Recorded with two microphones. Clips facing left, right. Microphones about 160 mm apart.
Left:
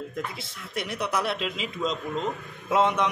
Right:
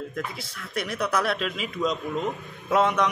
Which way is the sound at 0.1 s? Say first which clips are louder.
Right 1 dB; 20° left (ahead or behind).